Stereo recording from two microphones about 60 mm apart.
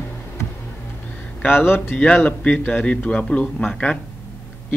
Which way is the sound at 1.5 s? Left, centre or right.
Left.